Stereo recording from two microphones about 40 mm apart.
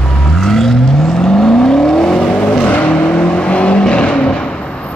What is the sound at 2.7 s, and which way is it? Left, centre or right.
Vehicle, left.